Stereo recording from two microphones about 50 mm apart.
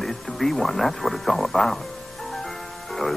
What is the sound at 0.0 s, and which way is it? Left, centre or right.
Speech, centre.